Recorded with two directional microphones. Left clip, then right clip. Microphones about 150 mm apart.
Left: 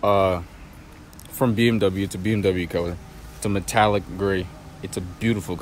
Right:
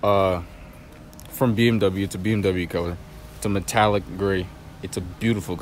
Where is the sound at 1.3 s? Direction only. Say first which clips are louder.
Even; 15° right (ahead or behind).